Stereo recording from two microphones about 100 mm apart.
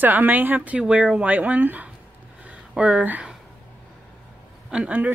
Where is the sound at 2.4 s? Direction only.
15° right (ahead or behind).